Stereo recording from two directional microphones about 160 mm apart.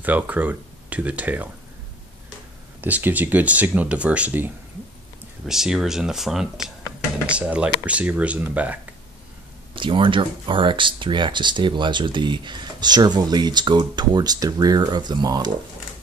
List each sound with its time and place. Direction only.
0.0 s speech: 10° right (ahead or behind)
2.8 s speech: 10° right (ahead or behind)
5.5 s speech: 5° right (ahead or behind)
9.8 s speech: 30° right (ahead or behind)